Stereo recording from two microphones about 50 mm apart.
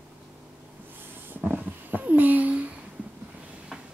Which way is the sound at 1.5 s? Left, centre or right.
Right.